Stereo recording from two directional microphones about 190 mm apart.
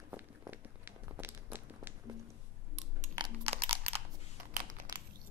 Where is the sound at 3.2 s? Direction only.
30° right (ahead or behind).